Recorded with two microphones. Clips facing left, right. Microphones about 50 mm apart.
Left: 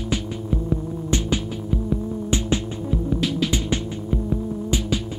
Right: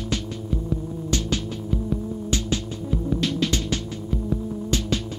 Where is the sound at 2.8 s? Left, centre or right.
Centre.